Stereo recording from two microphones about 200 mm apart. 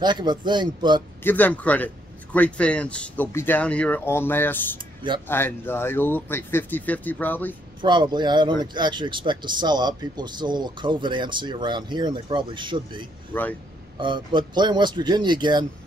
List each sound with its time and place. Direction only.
0.0 s speech: 20° right (ahead or behind)
1.2 s speech: 10° left (ahead or behind)
7.8 s speech: 20° right (ahead or behind)
13.3 s speech: 10° left (ahead or behind)
13.9 s speech: 25° right (ahead or behind)